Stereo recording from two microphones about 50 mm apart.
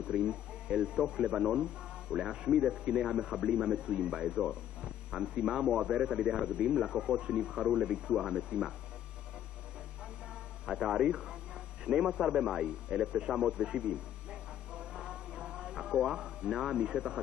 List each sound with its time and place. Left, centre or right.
0.1 s a man's voice: centre
10.8 s a man's voice: centre
14.3 s a sound: centre